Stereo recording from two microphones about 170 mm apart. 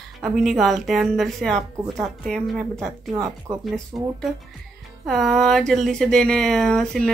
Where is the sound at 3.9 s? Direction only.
5° right (ahead or behind).